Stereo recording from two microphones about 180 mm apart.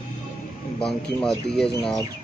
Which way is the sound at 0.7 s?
5° left (ahead or behind).